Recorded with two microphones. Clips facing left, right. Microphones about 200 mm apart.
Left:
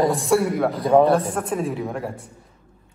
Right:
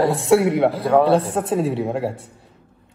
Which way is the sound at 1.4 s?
25° right (ahead or behind).